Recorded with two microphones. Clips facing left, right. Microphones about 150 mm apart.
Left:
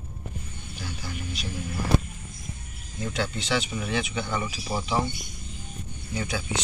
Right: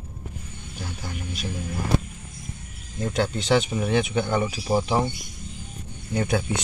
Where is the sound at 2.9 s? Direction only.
45° right (ahead or behind).